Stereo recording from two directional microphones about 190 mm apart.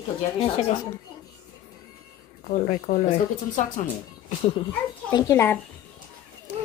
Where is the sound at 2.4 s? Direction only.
45° left (ahead or behind).